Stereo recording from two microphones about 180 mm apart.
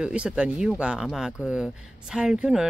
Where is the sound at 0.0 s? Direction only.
5° right (ahead or behind).